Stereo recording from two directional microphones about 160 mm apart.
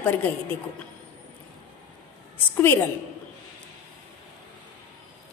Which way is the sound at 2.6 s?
10° left (ahead or behind).